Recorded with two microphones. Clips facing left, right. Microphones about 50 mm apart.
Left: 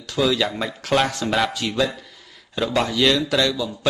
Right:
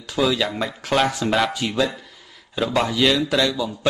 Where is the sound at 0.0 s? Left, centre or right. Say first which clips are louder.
Even; centre.